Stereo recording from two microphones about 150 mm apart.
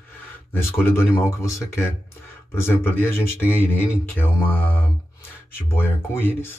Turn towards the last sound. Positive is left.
turn(degrees=15)  # may be behind; listen again after turning